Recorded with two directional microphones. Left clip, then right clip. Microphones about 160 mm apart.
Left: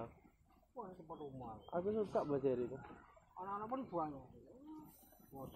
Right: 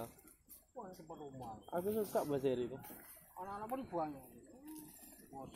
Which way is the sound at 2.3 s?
60° right (ahead or behind).